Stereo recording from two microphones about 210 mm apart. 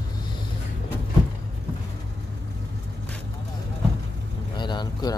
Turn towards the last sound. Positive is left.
turn(degrees=20)  # may be behind; listen again after turning